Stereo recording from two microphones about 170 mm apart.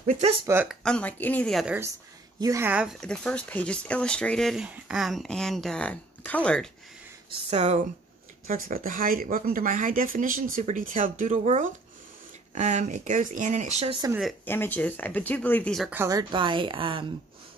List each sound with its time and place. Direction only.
0.7 s speech: 5° left (ahead or behind)
2.4 s speech: 15° right (ahead or behind); by 6.7 s 5° left (ahead or behind)
7.2 s speech: 35° right (ahead or behind)
8.5 s speech: 50° right (ahead or behind)
14.4 s speech: 10° left (ahead or behind)
15.9 s a woman's voice: 20° right (ahead or behind)